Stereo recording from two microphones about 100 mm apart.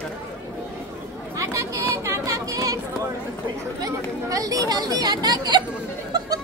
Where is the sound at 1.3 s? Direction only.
30° right (ahead or behind).